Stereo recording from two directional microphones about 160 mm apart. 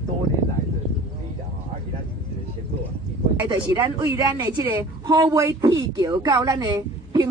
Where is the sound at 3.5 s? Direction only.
15° right (ahead or behind).